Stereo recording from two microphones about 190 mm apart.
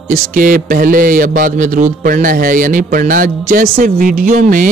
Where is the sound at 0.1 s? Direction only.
45° right (ahead or behind).